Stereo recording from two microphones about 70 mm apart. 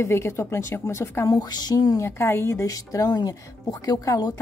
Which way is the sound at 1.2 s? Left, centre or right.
Left.